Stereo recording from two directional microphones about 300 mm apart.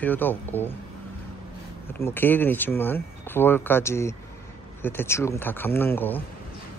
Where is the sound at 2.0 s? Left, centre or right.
Centre.